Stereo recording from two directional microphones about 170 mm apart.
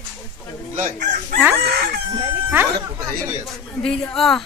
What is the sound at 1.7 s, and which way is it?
Chicken, 65° right (ahead or behind).